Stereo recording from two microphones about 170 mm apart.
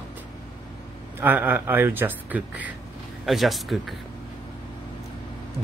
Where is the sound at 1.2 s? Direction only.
10° right (ahead or behind).